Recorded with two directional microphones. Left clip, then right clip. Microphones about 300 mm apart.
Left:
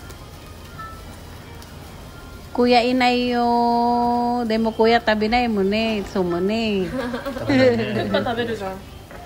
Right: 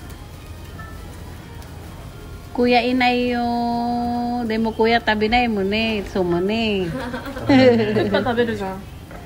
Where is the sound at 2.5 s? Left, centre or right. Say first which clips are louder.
Left 1 dB; centre.